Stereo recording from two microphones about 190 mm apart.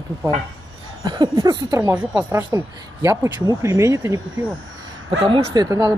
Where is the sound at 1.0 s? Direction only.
25° right (ahead or behind).